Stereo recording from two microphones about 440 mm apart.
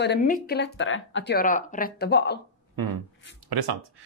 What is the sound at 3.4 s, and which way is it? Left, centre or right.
Speech, right.